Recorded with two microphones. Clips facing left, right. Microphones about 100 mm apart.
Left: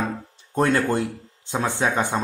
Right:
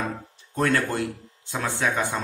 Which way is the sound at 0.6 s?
25° left (ahead or behind).